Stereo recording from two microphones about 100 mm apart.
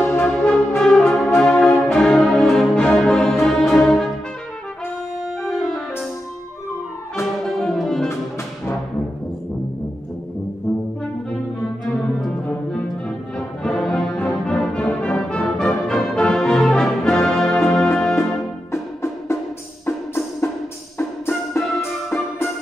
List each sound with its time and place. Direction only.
0.0 s music: 20° left (ahead or behind)
0.3 s brass instrument: 10° left (ahead or behind)
1.4 s music: 5° left (ahead or behind)
3.7 s brass instrument: 5° left (ahead or behind)
5.4 s music: 5° left (ahead or behind)
7.4 s music: 5° left (ahead or behind)
13.7 s music: 5° left (ahead or behind)